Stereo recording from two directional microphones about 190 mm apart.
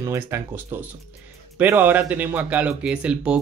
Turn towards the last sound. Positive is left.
turn(degrees=-5)  # may be behind; listen again after turning